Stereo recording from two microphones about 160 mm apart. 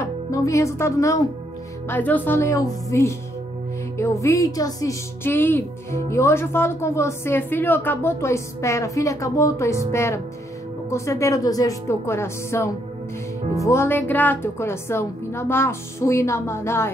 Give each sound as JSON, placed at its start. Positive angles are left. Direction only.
{"t": 0.3, "sound": "a woman's voice", "side_deg": 20}